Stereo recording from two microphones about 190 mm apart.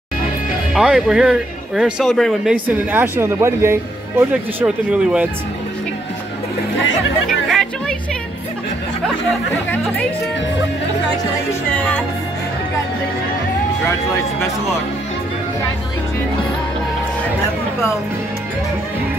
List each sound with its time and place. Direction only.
0.7 s speech: centre (ahead or behind)
7.2 s chatter: centre (ahead or behind)